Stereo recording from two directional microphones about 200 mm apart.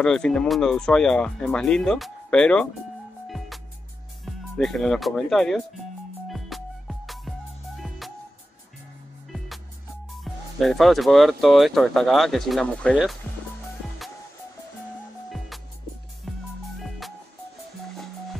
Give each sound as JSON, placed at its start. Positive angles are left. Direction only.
{"t": 0.0, "sound": "speech", "side_deg": 5}
{"t": 3.3, "sound": "music", "side_deg": 0}
{"t": 4.6, "sound": "speech", "side_deg": 0}
{"t": 6.2, "sound": "music", "side_deg": 0}
{"t": 10.2, "sound": "speech", "side_deg": 0}
{"t": 16.3, "sound": "music", "side_deg": 0}